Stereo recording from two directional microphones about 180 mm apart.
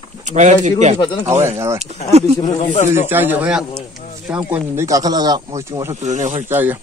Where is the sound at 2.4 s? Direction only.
40° left (ahead or behind).